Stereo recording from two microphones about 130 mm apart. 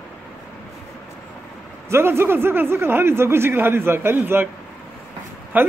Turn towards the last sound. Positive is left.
turn(degrees=-15)  # may be behind; listen again after turning